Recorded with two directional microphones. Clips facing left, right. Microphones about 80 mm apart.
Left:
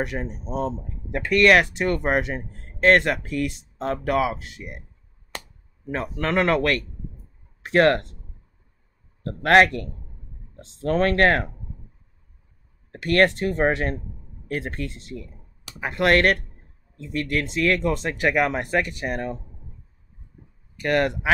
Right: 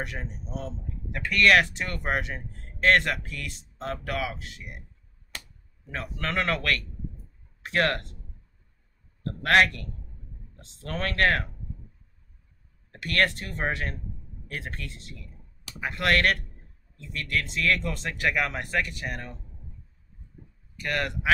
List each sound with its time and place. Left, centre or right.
0.0 s speech: left
5.9 s speech: left
9.2 s speech: left
12.9 s speech: left
20.8 s speech: left